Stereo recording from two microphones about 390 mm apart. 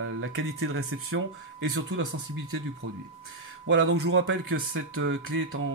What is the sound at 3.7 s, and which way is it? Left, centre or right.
Speech, right.